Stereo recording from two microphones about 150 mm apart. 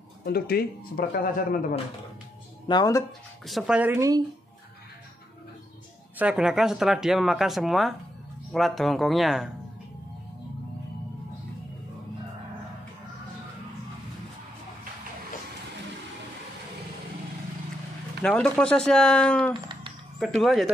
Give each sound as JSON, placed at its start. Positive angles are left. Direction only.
{"t": 0.2, "sound": "speech", "side_deg": 90}
{"t": 2.7, "sound": "speech", "side_deg": 25}
{"t": 3.4, "sound": "speech", "side_deg": -5}
{"t": 6.1, "sound": "speech", "side_deg": -5}
{"t": 18.2, "sound": "speech", "side_deg": 5}
{"t": 19.5, "sound": "a sound", "side_deg": -30}
{"t": 20.2, "sound": "speech", "side_deg": 0}